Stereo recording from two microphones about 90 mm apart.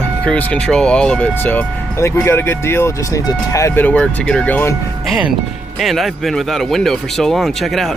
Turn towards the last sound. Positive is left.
turn(degrees=0)  # may be behind; listen again after turning